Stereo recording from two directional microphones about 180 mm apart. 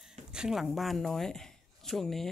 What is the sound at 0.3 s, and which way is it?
Speech, 5° right (ahead or behind).